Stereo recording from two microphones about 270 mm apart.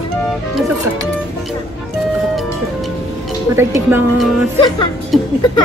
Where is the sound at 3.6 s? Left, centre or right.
Centre.